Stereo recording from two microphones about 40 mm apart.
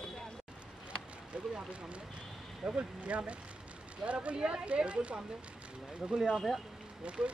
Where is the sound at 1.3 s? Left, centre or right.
Right.